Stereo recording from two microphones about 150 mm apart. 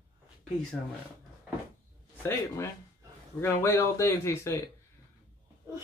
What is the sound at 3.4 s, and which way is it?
Speech, 15° left (ahead or behind).